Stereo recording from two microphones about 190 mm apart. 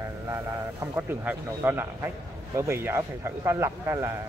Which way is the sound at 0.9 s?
10° right (ahead or behind).